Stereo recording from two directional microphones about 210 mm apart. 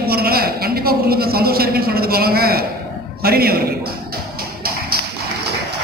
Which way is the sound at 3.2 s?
45° right (ahead or behind).